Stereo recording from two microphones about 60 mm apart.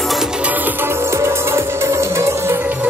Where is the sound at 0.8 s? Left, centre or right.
Right.